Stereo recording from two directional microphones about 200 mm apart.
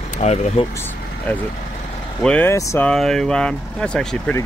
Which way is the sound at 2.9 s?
Centre (ahead or behind).